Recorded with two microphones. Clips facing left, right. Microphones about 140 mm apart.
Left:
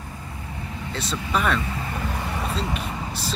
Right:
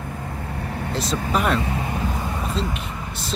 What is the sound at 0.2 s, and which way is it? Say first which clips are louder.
Vehicle: right 6 dB; 60° right (ahead or behind).